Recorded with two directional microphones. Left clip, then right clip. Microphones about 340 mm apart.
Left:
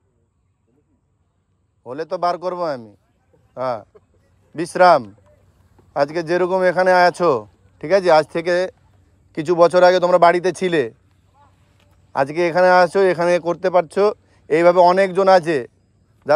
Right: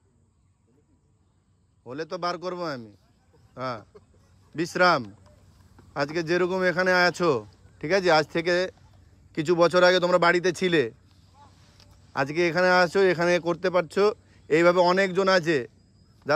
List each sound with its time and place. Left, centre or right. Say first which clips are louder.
1.9 s speech: left 9 dB; centre
11.3 s a sound: even; right
12.1 s speech: left 7 dB; centre